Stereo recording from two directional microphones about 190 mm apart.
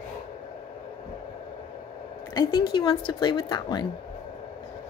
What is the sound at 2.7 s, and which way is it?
A woman's voice, 25° left (ahead or behind).